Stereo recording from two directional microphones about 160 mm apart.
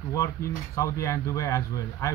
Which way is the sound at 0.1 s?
20° left (ahead or behind).